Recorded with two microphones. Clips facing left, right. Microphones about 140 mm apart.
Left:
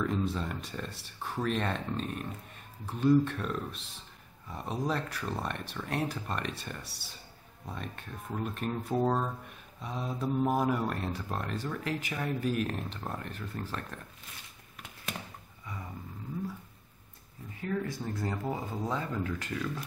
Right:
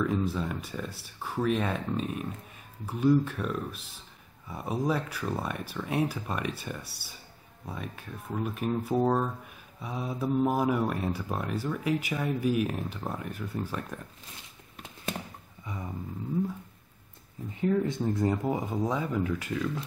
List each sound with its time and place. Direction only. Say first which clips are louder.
0.0 s speech: right 3 dB; 5° right (ahead or behind)
17.5 s speech: right 7 dB; 20° right (ahead or behind)